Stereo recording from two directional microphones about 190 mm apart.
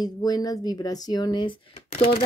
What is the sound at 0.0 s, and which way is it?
A woman's voice, 20° left (ahead or behind).